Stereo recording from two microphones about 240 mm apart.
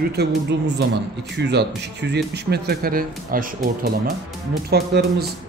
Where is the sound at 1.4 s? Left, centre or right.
Right.